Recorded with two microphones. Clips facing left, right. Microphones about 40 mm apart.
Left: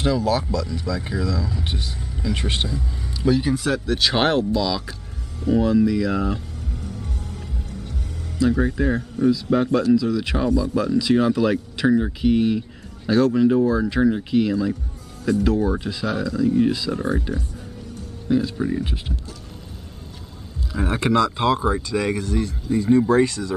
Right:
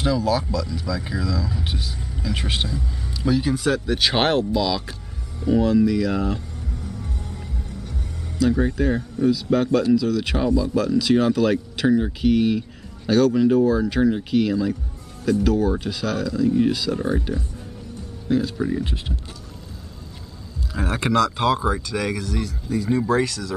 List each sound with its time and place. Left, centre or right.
0.0 s speech: centre
8.5 s speech: centre
10.3 s speech: centre
20.7 s speech: right
21.1 s speech: centre
22.1 s speech: left